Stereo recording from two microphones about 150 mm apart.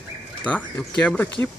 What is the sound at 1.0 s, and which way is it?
Speech, 10° left (ahead or behind).